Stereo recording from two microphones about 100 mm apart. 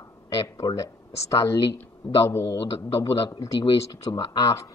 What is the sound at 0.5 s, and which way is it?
A man's voice, 35° left (ahead or behind).